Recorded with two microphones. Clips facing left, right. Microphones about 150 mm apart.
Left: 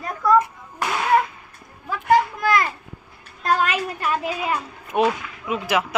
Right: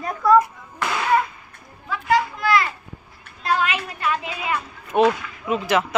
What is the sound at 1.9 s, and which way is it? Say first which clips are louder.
Children playing: left 2 dB; 50° left (ahead or behind).